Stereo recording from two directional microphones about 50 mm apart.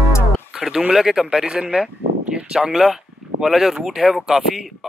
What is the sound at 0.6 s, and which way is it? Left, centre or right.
Speech, centre.